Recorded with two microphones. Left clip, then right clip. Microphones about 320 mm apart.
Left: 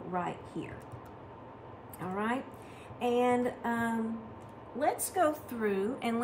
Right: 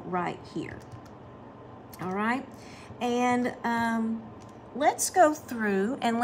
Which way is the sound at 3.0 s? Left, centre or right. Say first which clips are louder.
Right 2 dB; right.